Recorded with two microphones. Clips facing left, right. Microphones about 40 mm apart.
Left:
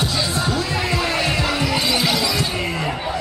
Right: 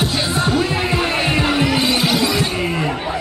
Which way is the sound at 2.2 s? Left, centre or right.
Right.